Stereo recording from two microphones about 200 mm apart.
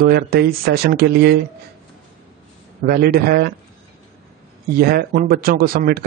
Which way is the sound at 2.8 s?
50° right (ahead or behind).